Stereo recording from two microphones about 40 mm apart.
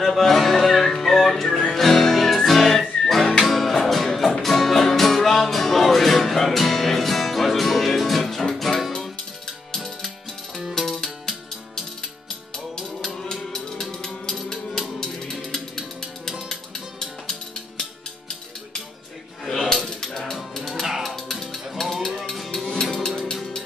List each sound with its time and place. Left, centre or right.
0.0 s music: centre
11.0 s music: centre
17.0 s music: centre
19.4 s coin: centre
20.1 s music: centre
22.5 s music: centre